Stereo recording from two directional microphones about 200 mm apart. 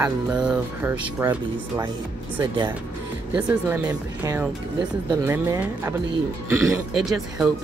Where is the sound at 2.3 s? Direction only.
25° right (ahead or behind).